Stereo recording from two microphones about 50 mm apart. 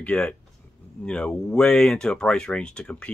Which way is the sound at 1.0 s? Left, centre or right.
Centre.